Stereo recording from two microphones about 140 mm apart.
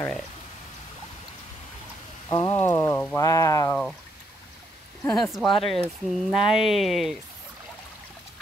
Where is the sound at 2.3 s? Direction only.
20° left (ahead or behind).